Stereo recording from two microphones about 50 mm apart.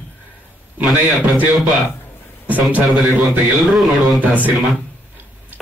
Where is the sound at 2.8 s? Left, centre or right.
Centre.